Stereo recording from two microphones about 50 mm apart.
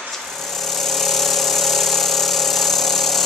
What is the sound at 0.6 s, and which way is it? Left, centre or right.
Engine, centre.